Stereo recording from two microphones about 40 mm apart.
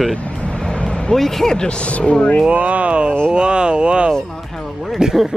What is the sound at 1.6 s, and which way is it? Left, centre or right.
Speech, left.